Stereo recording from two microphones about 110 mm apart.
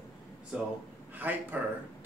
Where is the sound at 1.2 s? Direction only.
15° right (ahead or behind).